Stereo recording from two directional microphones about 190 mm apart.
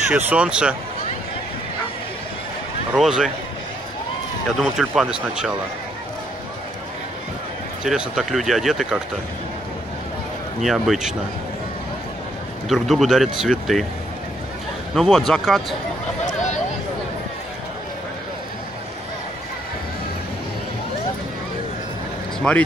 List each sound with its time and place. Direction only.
0.1 s speech: 5° right (ahead or behind)
2.9 s speech: 5° right (ahead or behind)
4.6 s speech: centre (ahead or behind)
7.8 s speech: 5° right (ahead or behind)
10.6 s speech: centre (ahead or behind)
12.6 s speech: centre (ahead or behind)
15.0 s speech: centre (ahead or behind)
16.3 s a sound: 40° left (ahead or behind)
22.5 s speech: 5° left (ahead or behind)